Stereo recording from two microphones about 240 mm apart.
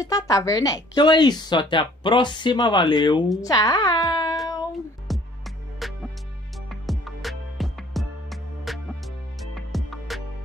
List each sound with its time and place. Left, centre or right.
0.0 s a woman's voice: centre
5.1 s music: centre